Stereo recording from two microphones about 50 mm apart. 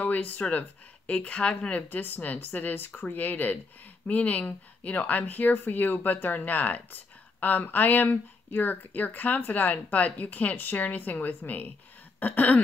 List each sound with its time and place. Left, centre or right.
0.0 s speech: left
1.8 s speech: left